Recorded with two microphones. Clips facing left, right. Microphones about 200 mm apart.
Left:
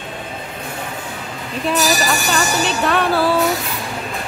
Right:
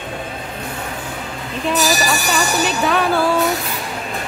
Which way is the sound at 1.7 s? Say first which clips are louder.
Even; centre (ahead or behind).